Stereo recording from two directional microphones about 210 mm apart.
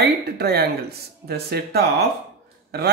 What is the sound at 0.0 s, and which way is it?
Speech, 50° right (ahead or behind).